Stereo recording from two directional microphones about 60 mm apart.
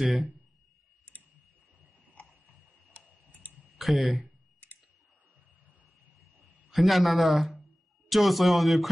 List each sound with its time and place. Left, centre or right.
0.0 s a man's voice: centre
3.3 s clicking: left
3.6 s speech: centre
6.4 s a man's voice: centre